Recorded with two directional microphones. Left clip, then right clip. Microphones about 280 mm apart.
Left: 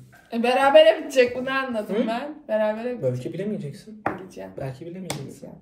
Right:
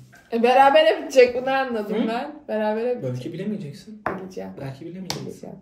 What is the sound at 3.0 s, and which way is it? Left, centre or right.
Speech, centre.